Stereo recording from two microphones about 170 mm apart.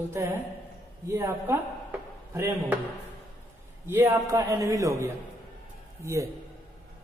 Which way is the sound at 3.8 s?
15° right (ahead or behind).